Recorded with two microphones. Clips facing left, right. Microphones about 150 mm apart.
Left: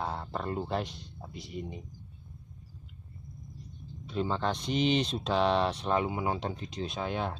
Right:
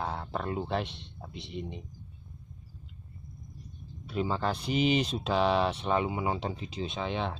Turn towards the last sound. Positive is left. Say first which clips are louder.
# even
turn(degrees=5)  # may be behind; listen again after turning